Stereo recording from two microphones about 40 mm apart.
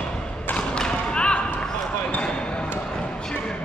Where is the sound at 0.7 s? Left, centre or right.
Left.